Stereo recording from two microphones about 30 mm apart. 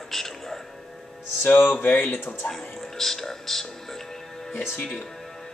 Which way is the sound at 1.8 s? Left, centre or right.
Left.